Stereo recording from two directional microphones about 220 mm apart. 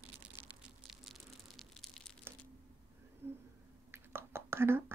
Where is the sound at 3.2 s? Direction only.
10° right (ahead or behind).